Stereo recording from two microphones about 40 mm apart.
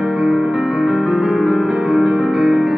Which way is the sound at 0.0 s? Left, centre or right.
Right.